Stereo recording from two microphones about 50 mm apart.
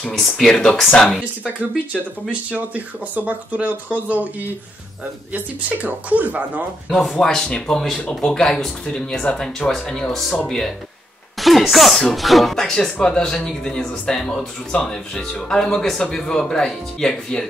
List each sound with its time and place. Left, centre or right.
0.0 s speech: centre
2.5 s speech: right
7.0 s speech: centre
7.3 s speech: centre
9.7 s speech: centre
12.5 s speech: centre